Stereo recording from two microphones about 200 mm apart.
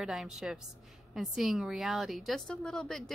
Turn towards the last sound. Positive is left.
turn(degrees=0)  # may be behind; listen again after turning